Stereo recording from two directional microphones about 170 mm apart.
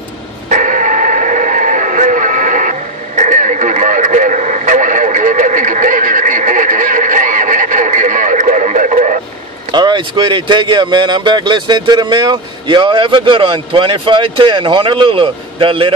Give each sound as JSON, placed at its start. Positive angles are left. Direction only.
{"t": 0.5, "sound": "radio", "side_deg": -50}
{"t": 9.7, "sound": "speech", "side_deg": -25}